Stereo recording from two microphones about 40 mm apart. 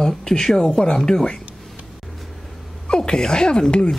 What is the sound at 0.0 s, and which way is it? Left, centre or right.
Speech, centre.